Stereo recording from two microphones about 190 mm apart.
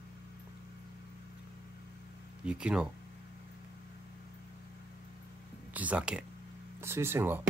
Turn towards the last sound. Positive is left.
turn(degrees=-10)  # may be behind; listen again after turning